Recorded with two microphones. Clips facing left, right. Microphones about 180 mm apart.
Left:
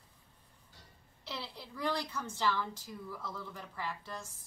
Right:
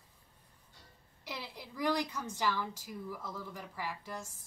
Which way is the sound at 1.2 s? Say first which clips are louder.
Even; 15° right (ahead or behind).